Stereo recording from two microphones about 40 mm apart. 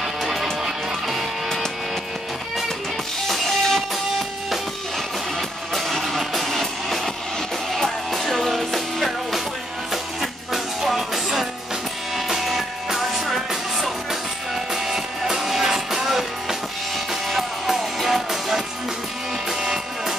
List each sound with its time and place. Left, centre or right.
0.0 s music: centre
3.3 s music: centre
5.8 s music: centre
10.5 s music: centre
19.6 s music: centre